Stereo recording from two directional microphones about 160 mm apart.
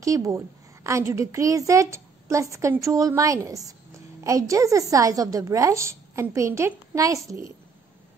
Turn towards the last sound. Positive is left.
turn(degrees=-20)  # may be behind; listen again after turning